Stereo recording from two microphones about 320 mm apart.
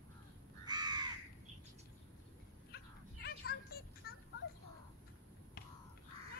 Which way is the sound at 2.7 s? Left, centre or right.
Left.